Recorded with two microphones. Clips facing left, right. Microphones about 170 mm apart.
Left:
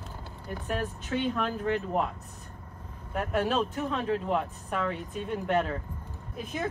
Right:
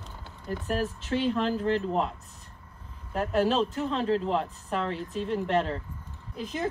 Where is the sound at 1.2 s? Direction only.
30° right (ahead or behind).